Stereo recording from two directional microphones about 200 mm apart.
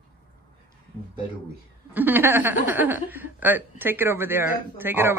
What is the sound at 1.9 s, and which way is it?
Speech, 10° right (ahead or behind).